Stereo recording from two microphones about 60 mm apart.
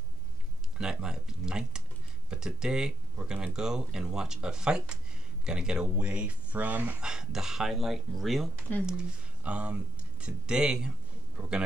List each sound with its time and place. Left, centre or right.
0.7 s speech: centre; by 7.0 s right
7.0 s speech: centre
8.8 s a man's voice: centre